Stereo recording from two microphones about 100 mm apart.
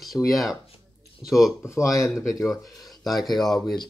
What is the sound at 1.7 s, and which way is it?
Speech, 35° left (ahead or behind).